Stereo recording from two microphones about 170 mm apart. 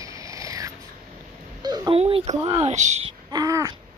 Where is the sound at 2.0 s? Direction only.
35° right (ahead or behind).